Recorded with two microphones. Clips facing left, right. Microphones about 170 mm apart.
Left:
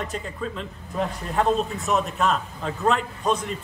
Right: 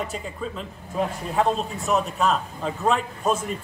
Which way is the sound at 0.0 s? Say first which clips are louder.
Even; centre (ahead or behind).